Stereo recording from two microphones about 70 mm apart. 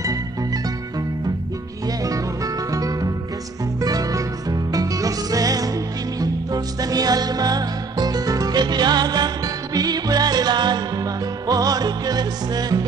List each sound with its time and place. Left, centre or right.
0.0 s music: right
2.0 s music: right
11.4 s music: right